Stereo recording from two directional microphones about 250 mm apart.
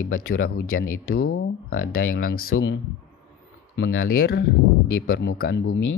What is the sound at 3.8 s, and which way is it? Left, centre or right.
Speech, left.